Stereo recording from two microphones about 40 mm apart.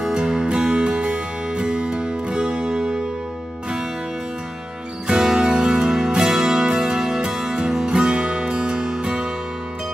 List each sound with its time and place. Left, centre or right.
0.0 s music: centre
5.0 s music: centre